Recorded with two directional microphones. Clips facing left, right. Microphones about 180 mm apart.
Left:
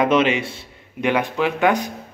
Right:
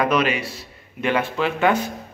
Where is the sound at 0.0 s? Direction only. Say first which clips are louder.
Left 3 dB; 25° left (ahead or behind).